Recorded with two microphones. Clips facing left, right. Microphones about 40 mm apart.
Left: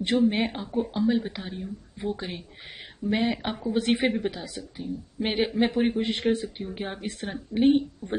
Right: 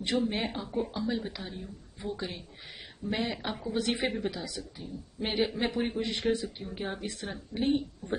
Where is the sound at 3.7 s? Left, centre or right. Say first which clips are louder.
Left 6 dB; left.